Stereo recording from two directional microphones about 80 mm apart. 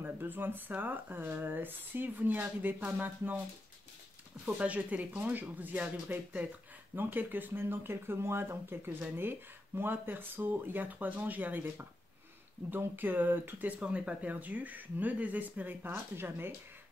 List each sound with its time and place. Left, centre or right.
0.0 s speech: right
4.6 s speech: centre